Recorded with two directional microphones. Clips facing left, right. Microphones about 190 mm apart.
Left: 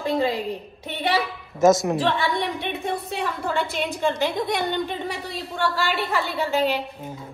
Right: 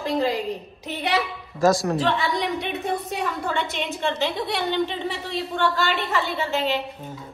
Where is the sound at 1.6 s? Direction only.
20° left (ahead or behind).